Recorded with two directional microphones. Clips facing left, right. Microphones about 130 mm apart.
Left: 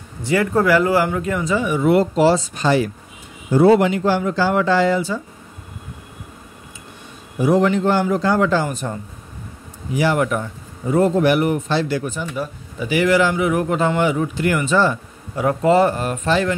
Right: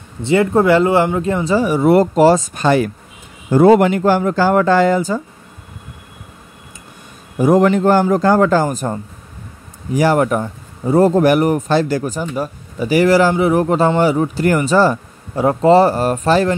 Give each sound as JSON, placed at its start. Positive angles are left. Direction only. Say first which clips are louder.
{"t": 0.2, "sound": "a man's voice", "louder": "right 4 dB", "side_deg": -25}
{"t": 7.3, "sound": "a man's voice", "louder": "right 4 dB", "side_deg": -45}